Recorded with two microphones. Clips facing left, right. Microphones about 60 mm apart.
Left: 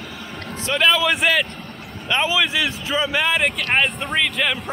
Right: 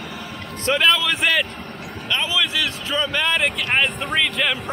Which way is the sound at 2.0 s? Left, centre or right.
Centre.